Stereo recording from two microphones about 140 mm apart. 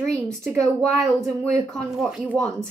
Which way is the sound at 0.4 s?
Centre (ahead or behind).